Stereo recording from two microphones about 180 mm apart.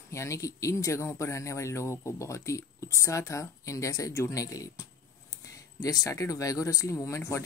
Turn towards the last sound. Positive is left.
turn(degrees=15)  # may be behind; listen again after turning